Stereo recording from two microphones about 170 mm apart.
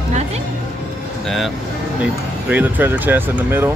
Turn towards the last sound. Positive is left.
turn(degrees=-15)  # may be behind; listen again after turning